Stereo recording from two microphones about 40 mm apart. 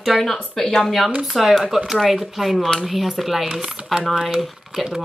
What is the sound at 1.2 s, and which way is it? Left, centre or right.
Speech, centre.